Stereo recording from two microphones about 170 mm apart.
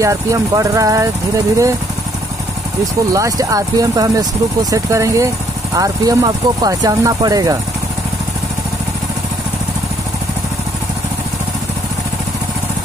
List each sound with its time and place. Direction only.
0.0 s speech: 20° right (ahead or behind)
3.1 s speech: 20° right (ahead or behind)